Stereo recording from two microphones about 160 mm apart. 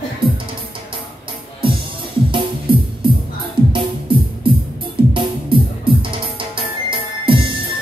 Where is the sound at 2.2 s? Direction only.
30° right (ahead or behind).